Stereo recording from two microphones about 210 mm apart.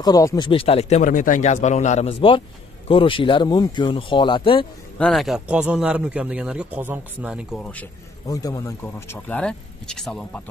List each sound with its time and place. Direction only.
0.0 s speech: 15° left (ahead or behind)
4.9 s a man's voice: centre (ahead or behind)
8.3 s speech: 15° left (ahead or behind)